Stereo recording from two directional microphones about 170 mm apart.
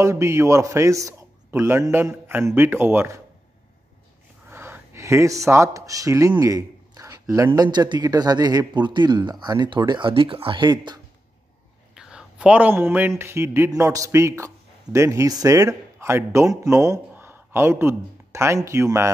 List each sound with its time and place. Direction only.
0.0 s a man's voice: 15° right (ahead or behind)
4.5 s speech: 10° right (ahead or behind)
11.9 s a man's voice: 5° right (ahead or behind)